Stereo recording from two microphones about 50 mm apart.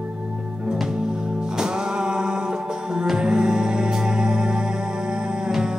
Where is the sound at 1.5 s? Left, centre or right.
Centre.